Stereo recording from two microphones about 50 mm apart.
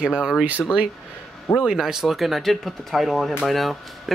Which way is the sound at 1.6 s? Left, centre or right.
Centre.